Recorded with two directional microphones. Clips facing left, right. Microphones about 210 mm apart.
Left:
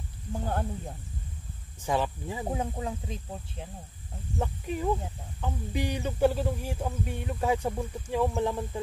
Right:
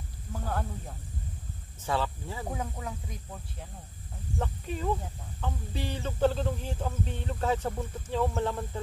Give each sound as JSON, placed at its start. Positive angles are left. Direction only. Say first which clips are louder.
{"t": 0.3, "sound": "speech", "louder": "left 3 dB", "side_deg": 25}
{"t": 1.8, "sound": "speech", "louder": "left 2 dB", "side_deg": 15}
{"t": 4.4, "sound": "speech", "louder": "left 3 dB", "side_deg": 10}